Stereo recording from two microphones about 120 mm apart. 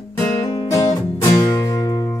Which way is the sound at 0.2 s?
30° left (ahead or behind).